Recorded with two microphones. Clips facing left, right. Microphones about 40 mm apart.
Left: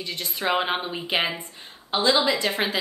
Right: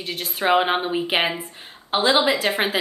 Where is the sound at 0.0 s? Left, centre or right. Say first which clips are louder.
Right 4 dB; centre.